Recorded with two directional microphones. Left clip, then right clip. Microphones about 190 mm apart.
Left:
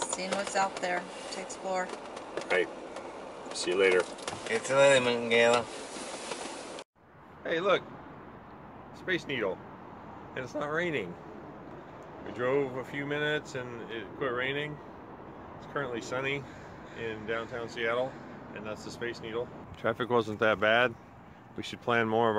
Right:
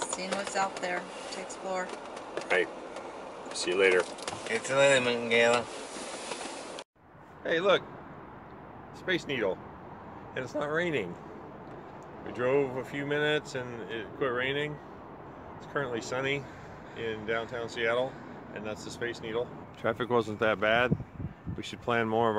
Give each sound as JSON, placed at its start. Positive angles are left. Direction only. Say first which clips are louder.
{"t": 0.0, "sound": "speech", "louder": "left 1 dB", "side_deg": 0}
{"t": 7.4, "sound": "speech", "louder": "right 2 dB", "side_deg": -20}
{"t": 9.0, "sound": "speech", "louder": "right 1 dB", "side_deg": -20}
{"t": 12.4, "sound": "speech", "louder": "right 2 dB", "side_deg": -20}
{"t": 15.7, "sound": "speech", "louder": "right 1 dB", "side_deg": -20}
{"t": 19.8, "sound": "speech", "louder": "even", "side_deg": 5}